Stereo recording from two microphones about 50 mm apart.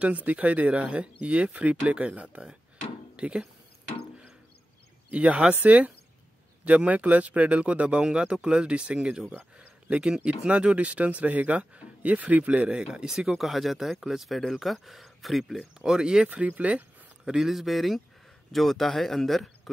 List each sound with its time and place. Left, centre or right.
0.0 s speech: right
5.1 s speech: right
12.7 s speech: centre
15.9 s speech: centre
16.3 s speech: right
17.2 s speech: centre